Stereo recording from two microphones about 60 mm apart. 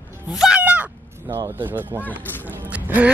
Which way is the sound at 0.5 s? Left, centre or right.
Right.